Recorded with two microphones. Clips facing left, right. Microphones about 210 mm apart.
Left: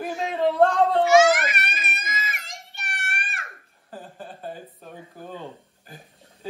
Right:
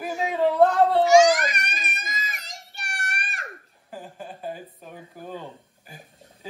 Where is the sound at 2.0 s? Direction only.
40° right (ahead or behind).